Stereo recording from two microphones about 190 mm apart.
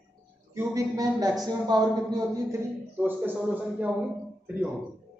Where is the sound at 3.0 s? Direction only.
10° right (ahead or behind).